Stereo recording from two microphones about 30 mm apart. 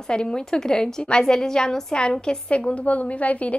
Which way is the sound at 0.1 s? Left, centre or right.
Left.